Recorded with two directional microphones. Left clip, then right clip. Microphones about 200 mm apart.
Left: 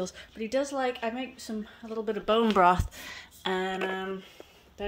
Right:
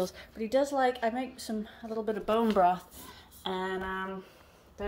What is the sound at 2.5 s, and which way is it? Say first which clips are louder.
Speech: left 3 dB; 40° left (ahead or behind).